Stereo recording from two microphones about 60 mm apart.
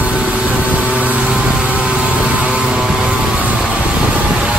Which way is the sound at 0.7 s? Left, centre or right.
Right.